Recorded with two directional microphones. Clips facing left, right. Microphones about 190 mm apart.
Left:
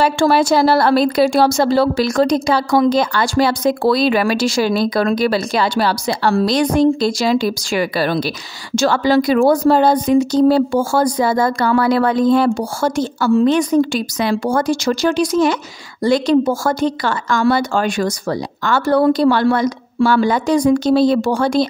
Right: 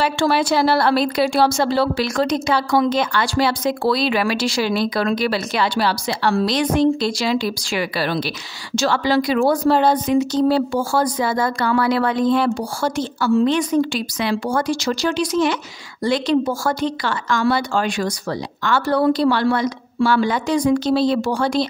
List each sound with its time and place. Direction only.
0.0 s speech: 45° left (ahead or behind)